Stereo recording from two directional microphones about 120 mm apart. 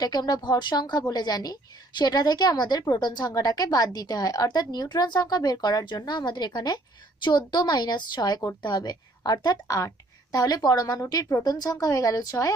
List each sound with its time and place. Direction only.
0.0 s a woman's voice: 35° left (ahead or behind)